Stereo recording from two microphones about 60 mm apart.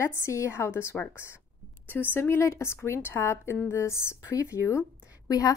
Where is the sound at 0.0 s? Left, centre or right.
Left.